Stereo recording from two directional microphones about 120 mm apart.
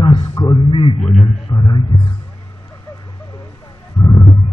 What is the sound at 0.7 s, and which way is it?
A man's voice, 45° left (ahead or behind).